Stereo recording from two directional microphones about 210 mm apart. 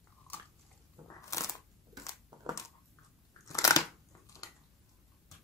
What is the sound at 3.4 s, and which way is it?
Crunch, 15° left (ahead or behind).